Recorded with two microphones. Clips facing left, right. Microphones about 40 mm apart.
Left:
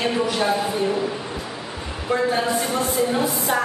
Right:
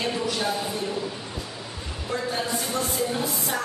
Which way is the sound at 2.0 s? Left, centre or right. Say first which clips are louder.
Left 7 dB; left.